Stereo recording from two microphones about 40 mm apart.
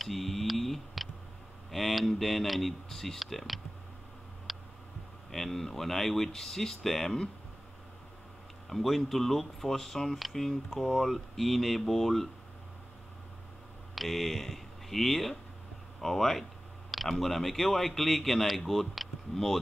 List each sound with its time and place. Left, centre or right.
0.0 s a sound: centre
1.7 s speech: centre
4.5 s a sound: centre
5.3 s speech: centre
8.6 s speech: centre
13.9 s speech: centre